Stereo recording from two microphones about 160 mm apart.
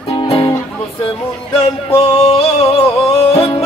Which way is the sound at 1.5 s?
40° left (ahead or behind).